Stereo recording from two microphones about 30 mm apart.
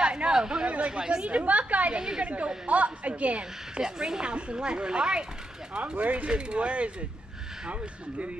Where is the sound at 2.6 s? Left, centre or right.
Right.